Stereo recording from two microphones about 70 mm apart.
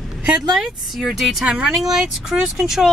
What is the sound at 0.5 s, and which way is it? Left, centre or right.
Speech, centre.